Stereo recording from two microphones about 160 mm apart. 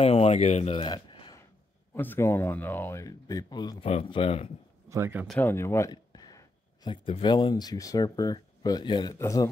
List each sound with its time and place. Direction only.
0.0 s speech: 40° left (ahead or behind)
2.0 s speech: 15° left (ahead or behind)
3.8 s speech: 35° left (ahead or behind)
4.8 s speech: 15° right (ahead or behind)
5.4 s speech: 15° left (ahead or behind)